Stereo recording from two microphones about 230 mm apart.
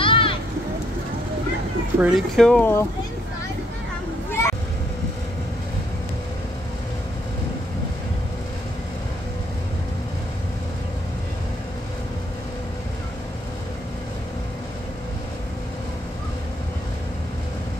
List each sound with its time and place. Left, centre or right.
0.0 s a sound: left
2.0 s speech: centre
4.3 s vehicle: centre